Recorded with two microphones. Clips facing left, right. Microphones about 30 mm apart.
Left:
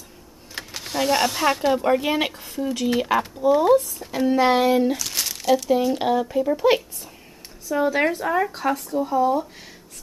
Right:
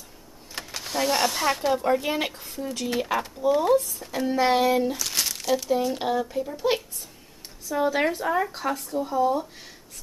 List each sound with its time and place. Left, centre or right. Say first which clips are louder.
0.6 s a child's voice: left 2 dB; centre
2.7 s speech: left 5 dB; centre
4.9 s crumpling: left 1 dB; centre
5.7 s speech: left 4 dB; centre
6.2 s a child's voice: left 7 dB; left
7.6 s speech: left 3 dB; centre